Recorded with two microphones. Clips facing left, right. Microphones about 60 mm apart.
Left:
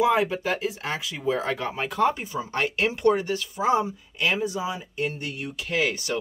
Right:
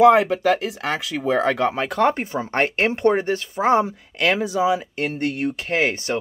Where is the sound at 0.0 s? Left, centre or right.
Right.